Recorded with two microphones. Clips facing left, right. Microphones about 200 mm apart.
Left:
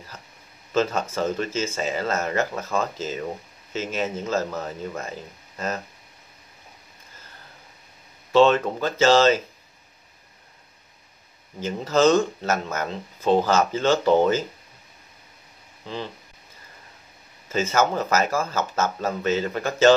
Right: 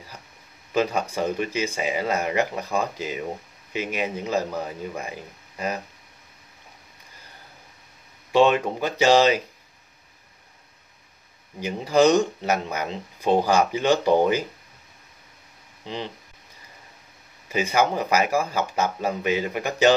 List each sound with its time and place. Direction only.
0.7 s speech: 15° right (ahead or behind)
8.3 s speech: 15° right (ahead or behind)
11.6 s speech: 15° right (ahead or behind)
15.8 s speech: 15° right (ahead or behind)
17.5 s speech: 15° right (ahead or behind)